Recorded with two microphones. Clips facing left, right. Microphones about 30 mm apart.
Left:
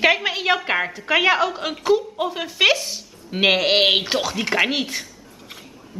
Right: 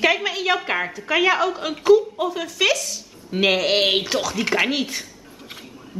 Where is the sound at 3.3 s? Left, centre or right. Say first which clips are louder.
Left 1 dB; centre.